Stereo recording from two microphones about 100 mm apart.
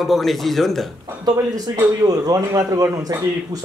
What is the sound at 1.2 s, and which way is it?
Speech, 45° right (ahead or behind).